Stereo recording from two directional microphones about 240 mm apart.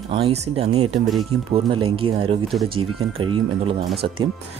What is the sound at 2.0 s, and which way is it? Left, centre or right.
Speech, right.